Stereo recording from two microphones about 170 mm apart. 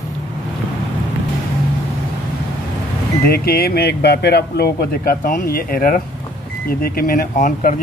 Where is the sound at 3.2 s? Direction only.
65° left (ahead or behind); by 7.7 s 50° left (ahead or behind).